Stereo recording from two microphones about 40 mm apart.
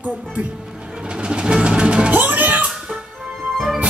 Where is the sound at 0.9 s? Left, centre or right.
Right.